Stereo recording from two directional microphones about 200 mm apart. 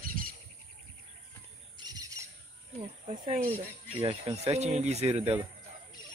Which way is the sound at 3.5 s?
30° right (ahead or behind).